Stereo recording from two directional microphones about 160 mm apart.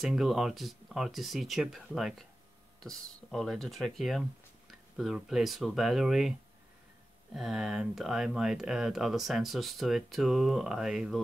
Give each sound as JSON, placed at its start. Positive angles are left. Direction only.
{"t": 0.0, "sound": "speech", "side_deg": 0}
{"t": 7.3, "sound": "speech", "side_deg": 0}